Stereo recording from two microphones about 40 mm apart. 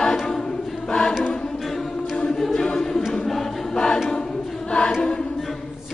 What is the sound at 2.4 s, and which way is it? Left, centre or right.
A capella, centre.